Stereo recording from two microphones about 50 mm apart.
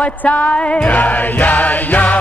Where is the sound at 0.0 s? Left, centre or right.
Left.